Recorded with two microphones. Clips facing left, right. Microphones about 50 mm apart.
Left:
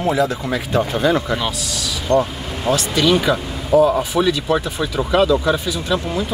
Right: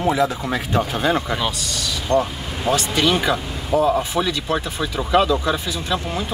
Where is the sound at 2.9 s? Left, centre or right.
Right.